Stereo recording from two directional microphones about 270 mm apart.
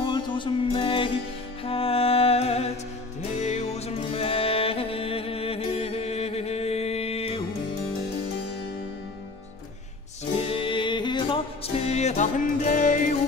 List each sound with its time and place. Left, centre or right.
0.0 s music: centre
10.3 s music: centre